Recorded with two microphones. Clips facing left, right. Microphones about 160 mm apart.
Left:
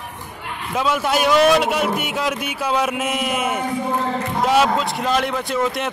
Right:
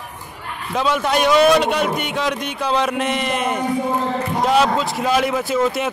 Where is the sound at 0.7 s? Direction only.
5° left (ahead or behind).